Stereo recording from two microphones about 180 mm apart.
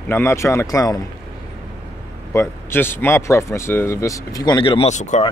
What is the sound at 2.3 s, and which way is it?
A man's voice, 15° left (ahead or behind).